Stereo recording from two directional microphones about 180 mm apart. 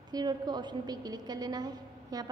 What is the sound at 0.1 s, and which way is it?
A woman's voice, 20° right (ahead or behind).